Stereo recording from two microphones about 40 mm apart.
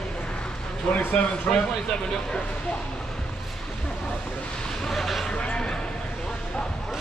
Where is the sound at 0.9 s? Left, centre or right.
Left.